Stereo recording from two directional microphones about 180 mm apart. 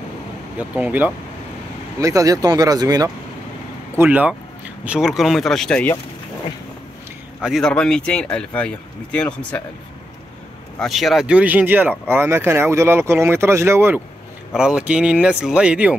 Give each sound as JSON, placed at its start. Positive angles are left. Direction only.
{"t": 0.6, "sound": "speech", "side_deg": -5}
{"t": 2.0, "sound": "speech", "side_deg": -20}
{"t": 3.9, "sound": "speech", "side_deg": -10}
{"t": 7.4, "sound": "speech", "side_deg": 0}
{"t": 10.8, "sound": "speech", "side_deg": 0}